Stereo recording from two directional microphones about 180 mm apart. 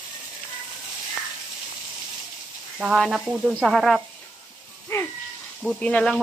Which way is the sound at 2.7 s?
5° right (ahead or behind).